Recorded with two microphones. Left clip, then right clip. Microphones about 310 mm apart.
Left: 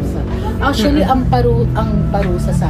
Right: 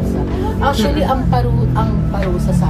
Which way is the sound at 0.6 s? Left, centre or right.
Left.